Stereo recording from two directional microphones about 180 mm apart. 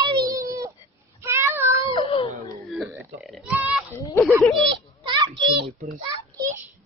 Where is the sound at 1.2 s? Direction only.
15° right (ahead or behind).